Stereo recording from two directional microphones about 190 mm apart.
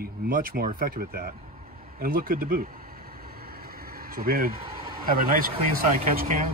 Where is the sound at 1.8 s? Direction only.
50° right (ahead or behind).